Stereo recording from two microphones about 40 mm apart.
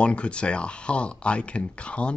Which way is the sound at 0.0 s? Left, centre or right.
Left.